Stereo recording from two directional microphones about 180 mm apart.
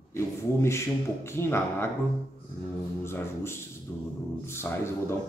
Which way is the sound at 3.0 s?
15° left (ahead or behind).